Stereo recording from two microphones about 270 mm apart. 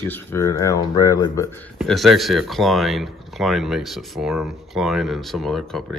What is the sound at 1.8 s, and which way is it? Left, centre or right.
Speech, centre.